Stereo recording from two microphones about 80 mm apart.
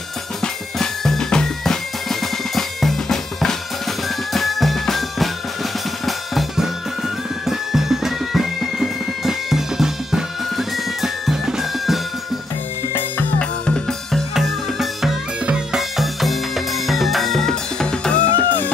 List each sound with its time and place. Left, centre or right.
0.4 s music: centre
6.0 s drum kit: centre
7.4 s music: centre
13.4 s drum: centre
14.3 s music: centre; by 18.7 s left